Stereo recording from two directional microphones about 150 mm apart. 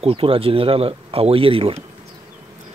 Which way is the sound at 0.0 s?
40° right (ahead or behind).